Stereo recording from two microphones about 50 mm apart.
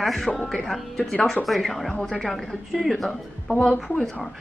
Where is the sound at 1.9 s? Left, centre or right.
Centre.